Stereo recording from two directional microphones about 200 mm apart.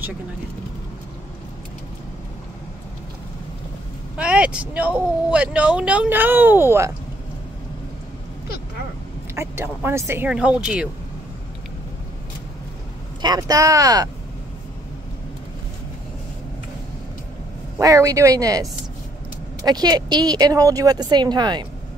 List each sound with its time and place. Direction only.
4.2 s speech: 5° right (ahead or behind)
9.3 s speech: 15° right (ahead or behind)
13.2 s speech: 20° right (ahead or behind)
17.7 s speech: 15° right (ahead or behind)